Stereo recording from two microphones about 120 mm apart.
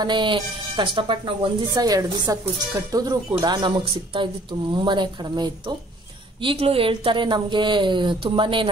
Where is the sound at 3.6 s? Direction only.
45° right (ahead or behind).